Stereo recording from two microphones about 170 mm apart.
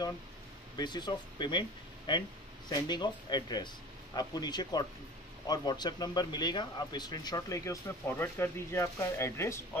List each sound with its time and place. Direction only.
0.7 s speech: 25° left (ahead or behind)